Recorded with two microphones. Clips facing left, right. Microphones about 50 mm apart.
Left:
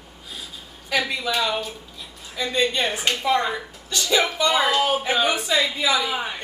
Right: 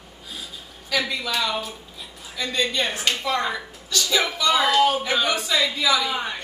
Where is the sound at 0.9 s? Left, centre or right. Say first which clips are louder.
Left 1 dB; left.